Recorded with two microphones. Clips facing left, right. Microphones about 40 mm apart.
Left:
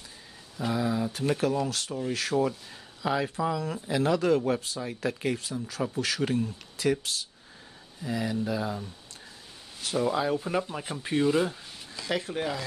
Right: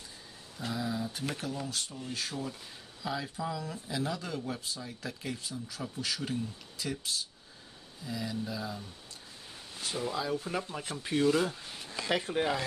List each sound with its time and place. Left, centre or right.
0.6 s speech: left
1.4 s speech: left
3.0 s speech: left
4.7 s speech: left
8.0 s speech: left
9.9 s speech: left
11.6 s a sound: centre
12.1 s speech: centre